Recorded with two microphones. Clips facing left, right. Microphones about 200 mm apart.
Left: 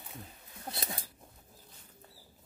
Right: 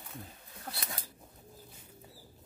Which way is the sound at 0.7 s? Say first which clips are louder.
Left 3 dB; 25° left (ahead or behind).